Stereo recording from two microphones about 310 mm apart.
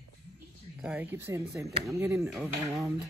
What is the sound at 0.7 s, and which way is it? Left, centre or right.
Speech, centre.